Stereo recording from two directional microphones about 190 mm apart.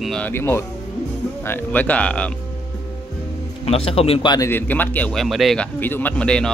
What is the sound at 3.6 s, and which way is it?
Speech, 30° left (ahead or behind).